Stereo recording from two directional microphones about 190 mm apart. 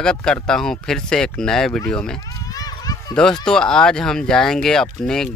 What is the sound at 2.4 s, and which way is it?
Children playing, 20° left (ahead or behind).